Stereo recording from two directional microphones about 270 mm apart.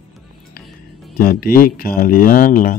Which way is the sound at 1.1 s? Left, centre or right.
Left.